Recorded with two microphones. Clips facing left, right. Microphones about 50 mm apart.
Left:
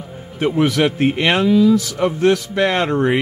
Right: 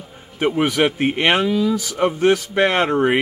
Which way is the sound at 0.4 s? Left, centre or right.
Centre.